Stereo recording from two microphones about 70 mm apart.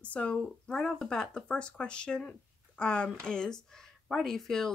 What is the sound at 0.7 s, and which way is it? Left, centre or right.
Speech, centre.